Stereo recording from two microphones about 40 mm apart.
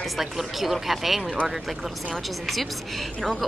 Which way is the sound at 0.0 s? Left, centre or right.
Centre.